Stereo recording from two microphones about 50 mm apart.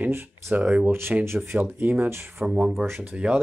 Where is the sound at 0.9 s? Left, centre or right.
Right.